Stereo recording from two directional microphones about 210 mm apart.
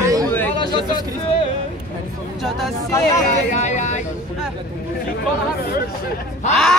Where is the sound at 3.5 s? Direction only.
35° left (ahead or behind).